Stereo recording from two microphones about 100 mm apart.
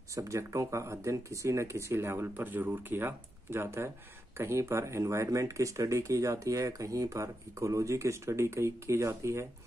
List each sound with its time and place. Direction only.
0.1 s speech: 30° right (ahead or behind)